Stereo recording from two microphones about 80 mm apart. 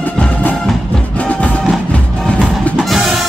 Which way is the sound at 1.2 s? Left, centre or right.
Centre.